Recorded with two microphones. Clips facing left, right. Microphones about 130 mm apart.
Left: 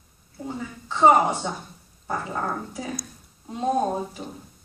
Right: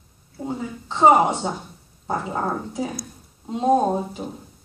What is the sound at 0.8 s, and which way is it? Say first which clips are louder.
Speech: right 2 dB; 25° right (ahead or behind).